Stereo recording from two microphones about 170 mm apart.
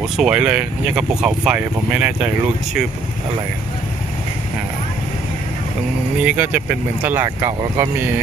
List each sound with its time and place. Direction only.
0.2 s speech: 5° right (ahead or behind)
6.2 s speech: 10° right (ahead or behind)